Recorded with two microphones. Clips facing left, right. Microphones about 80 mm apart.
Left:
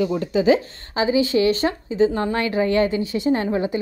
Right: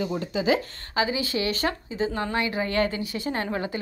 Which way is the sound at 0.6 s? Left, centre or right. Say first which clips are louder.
Left 3 dB; left.